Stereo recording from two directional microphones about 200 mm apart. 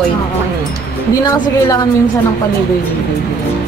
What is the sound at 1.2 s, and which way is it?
Speech, 20° left (ahead or behind).